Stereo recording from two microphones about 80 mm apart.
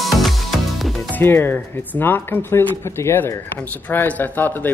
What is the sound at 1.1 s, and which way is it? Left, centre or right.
Speech, left.